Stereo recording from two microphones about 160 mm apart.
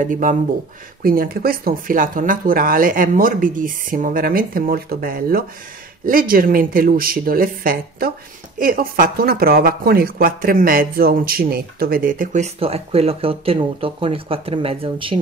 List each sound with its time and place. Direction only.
0.0 s speech: 55° right (ahead or behind)
1.0 s speech: 65° right (ahead or behind)
12.5 s speech: 40° right (ahead or behind)